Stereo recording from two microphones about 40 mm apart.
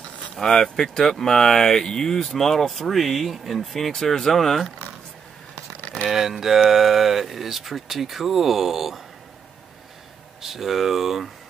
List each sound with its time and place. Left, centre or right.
0.4 s speech: centre
5.8 s a sound: left
6.0 s speech: centre
10.4 s speech: centre